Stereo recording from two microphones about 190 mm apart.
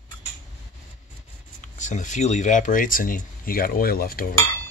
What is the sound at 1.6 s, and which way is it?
Speech, 40° left (ahead or behind).